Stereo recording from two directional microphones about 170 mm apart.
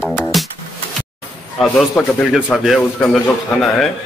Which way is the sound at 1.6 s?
5° left (ahead or behind).